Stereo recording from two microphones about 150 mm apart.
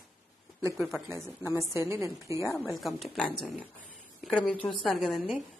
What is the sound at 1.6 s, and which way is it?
Speech, 20° right (ahead or behind).